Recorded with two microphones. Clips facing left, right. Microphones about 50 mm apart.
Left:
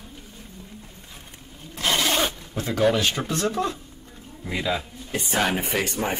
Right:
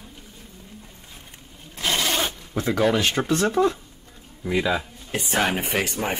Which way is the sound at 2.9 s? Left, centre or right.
Right.